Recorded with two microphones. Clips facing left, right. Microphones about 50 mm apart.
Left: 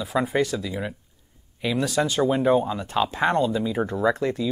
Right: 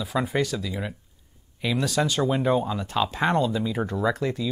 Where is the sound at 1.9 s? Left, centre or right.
Left.